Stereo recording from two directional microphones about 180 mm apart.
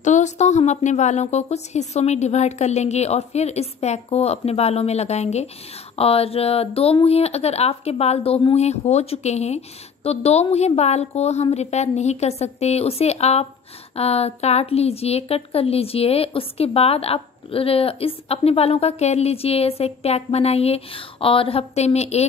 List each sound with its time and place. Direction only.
0.0 s a woman's voice: 40° left (ahead or behind)